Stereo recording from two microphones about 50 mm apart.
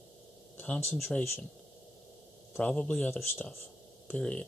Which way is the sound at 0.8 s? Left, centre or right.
Centre.